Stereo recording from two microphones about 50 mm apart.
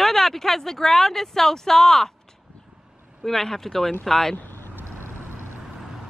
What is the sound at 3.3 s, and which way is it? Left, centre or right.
Speech, centre.